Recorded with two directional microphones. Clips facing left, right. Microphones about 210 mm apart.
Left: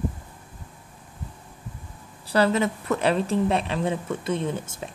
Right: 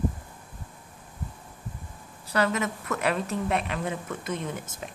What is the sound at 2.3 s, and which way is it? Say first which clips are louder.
A woman's voice: left 5 dB; 30° left (ahead or behind).